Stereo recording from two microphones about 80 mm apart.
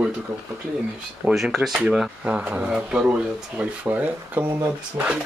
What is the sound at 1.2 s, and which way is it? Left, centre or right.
Speech, centre.